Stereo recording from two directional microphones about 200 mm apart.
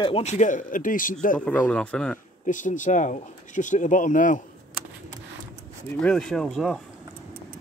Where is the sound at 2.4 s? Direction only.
40° left (ahead or behind).